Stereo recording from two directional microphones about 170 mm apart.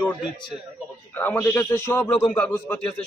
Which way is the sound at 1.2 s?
10° left (ahead or behind).